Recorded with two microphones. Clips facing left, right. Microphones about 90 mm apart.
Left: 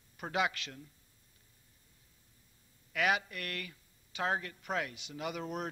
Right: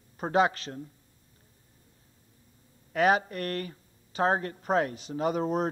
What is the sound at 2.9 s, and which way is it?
Speech, 35° right (ahead or behind).